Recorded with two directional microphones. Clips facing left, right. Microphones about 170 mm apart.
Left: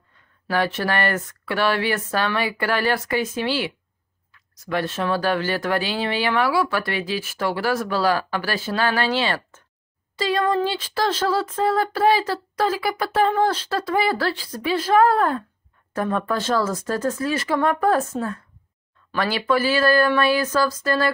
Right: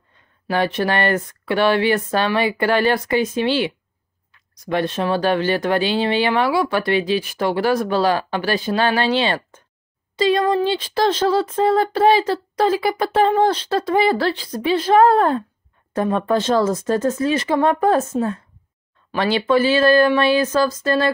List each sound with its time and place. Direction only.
0.5 s speech: 20° right (ahead or behind)